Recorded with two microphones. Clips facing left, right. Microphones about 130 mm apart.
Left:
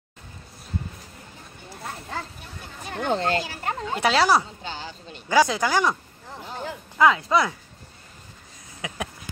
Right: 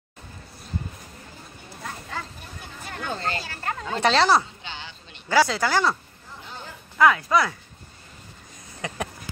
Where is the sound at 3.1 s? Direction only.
70° left (ahead or behind).